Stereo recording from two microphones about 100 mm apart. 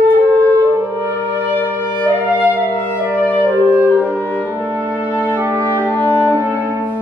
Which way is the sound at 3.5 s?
15° right (ahead or behind).